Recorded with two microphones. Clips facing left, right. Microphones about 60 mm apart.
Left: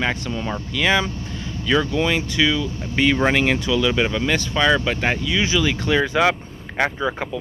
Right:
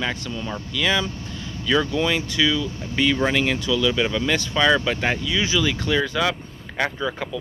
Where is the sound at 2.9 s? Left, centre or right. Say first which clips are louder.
Left 3 dB; left.